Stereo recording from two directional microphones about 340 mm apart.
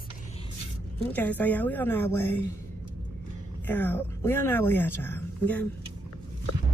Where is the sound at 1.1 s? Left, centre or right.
Centre.